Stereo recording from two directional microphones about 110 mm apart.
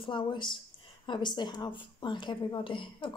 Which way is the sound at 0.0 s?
50° left (ahead or behind).